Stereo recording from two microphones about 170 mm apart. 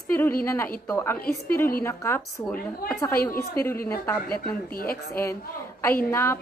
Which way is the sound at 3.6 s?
15° left (ahead or behind).